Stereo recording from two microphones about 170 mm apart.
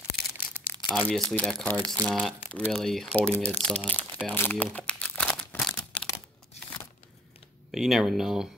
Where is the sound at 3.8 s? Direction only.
10° left (ahead or behind).